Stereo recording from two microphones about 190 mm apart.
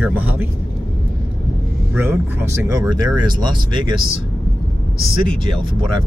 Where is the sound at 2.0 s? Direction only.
10° right (ahead or behind).